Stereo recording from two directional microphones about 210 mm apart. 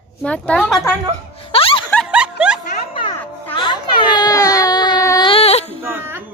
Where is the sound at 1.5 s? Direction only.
25° left (ahead or behind).